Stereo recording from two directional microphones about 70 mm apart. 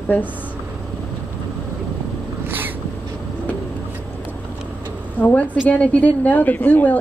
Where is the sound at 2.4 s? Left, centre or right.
Right.